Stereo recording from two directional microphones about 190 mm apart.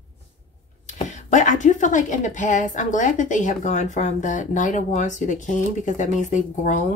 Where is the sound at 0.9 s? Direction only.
40° left (ahead or behind).